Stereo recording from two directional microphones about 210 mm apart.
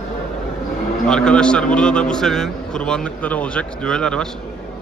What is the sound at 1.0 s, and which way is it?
A man's voice, 5° left (ahead or behind).